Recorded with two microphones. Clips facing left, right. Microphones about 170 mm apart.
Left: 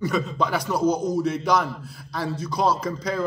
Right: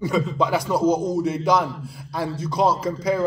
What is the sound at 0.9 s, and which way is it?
Speech, 25° right (ahead or behind).